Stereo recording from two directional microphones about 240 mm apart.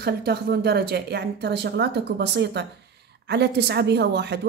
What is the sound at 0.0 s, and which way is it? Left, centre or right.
A woman's voice, right.